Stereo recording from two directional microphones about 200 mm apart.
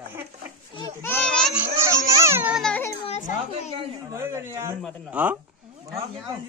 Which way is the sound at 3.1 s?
35° left (ahead or behind).